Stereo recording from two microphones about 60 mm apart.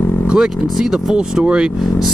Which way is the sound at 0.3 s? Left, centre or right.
Centre.